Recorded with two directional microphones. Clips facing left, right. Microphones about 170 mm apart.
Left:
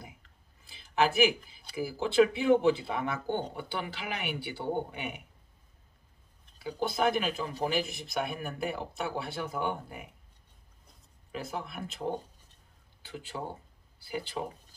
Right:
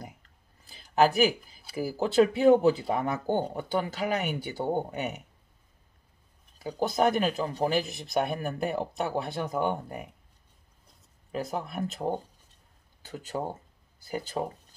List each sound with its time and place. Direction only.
0.7 s a sound: 40° right (ahead or behind)
1.8 s speech: 40° right (ahead or behind)
6.6 s speech: 40° right (ahead or behind)
11.3 s speech: 40° right (ahead or behind)